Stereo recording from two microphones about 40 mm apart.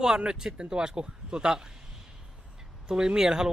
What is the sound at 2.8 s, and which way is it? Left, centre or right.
Speech, centre.